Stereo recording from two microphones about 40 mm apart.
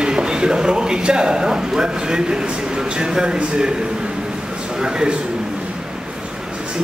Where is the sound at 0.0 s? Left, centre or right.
Centre.